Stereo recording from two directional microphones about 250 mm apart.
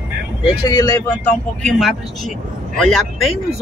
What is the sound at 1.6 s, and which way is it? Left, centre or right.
Speech, centre.